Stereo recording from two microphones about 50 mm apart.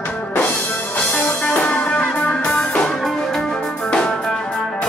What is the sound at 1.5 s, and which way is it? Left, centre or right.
Music, left.